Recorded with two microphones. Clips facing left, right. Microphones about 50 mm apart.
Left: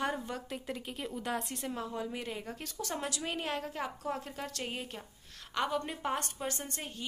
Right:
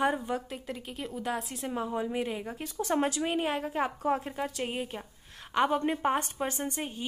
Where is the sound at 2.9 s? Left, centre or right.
Right.